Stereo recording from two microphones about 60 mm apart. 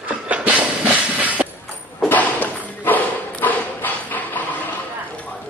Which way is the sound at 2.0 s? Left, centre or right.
Left.